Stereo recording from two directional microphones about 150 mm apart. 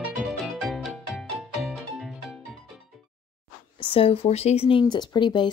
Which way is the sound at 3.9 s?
40° left (ahead or behind).